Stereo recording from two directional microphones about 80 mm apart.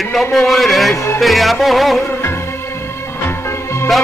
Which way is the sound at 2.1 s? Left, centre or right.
Left.